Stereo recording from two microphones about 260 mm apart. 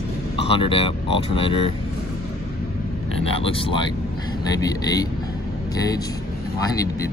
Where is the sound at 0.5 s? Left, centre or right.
Left.